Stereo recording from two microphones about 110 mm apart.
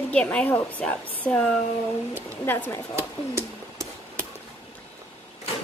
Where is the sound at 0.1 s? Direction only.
10° left (ahead or behind).